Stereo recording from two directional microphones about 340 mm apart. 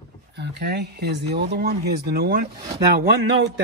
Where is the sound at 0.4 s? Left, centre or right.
Right.